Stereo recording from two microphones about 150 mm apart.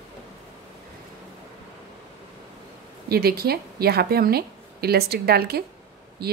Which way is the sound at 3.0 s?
90° right.